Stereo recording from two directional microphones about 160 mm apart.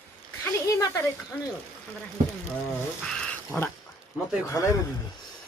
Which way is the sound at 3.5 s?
10° left (ahead or behind).